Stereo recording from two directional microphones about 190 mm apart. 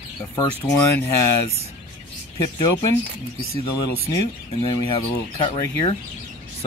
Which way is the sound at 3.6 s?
25° left (ahead or behind).